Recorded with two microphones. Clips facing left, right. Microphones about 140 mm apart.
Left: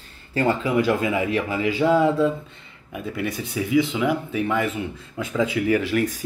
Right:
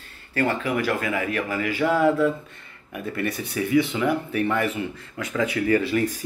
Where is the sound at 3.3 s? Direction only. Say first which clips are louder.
Even; centre (ahead or behind).